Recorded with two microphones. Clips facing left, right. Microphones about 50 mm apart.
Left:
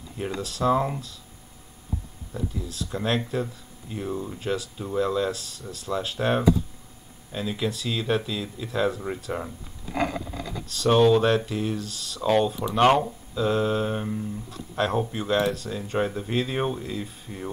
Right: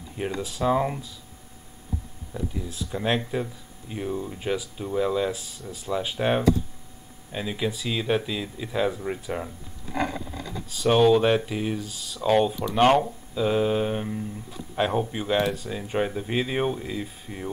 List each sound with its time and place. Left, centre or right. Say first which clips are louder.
0.2 s speech: even; centre
2.6 s speech: right 2 dB; centre
4.4 s speech: even; centre
10.7 s speech: even; centre
12.8 s speech: even; centre
13.3 s speech: right 1 dB; centre